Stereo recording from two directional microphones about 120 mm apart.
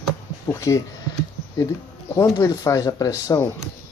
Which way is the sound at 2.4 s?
30° left (ahead or behind).